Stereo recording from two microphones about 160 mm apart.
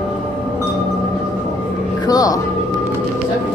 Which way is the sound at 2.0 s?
25° left (ahead or behind).